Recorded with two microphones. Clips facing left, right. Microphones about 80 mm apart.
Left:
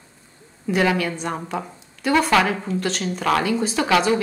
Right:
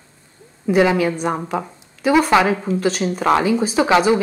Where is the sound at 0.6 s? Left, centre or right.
Centre.